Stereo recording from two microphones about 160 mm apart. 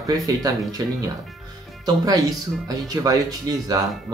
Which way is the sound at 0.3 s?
20° right (ahead or behind).